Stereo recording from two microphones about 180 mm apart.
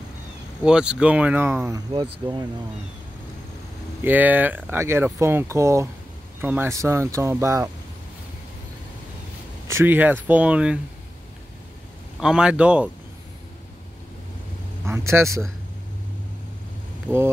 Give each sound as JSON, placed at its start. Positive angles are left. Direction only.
{"t": 0.6, "sound": "speech", "side_deg": -5}
{"t": 1.9, "sound": "speech", "side_deg": -25}
{"t": 4.0, "sound": "speech", "side_deg": -10}
{"t": 9.7, "sound": "speech", "side_deg": -15}
{"t": 12.2, "sound": "a man's voice", "side_deg": -5}
{"t": 14.9, "sound": "speech", "side_deg": -15}
{"t": 17.1, "sound": "speech", "side_deg": -15}